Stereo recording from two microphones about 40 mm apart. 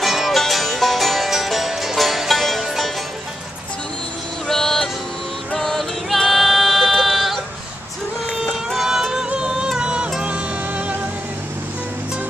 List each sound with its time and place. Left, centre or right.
0.0 s music: centre
4.5 s music: centre
6.0 s female singing: centre
8.3 s music: centre; by 11.1 s right